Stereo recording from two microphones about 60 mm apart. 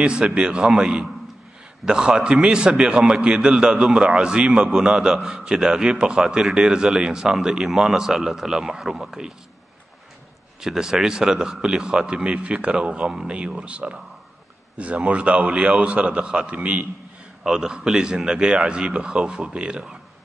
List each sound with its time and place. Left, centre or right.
0.0 s a man's voice: centre
10.6 s a man's voice: centre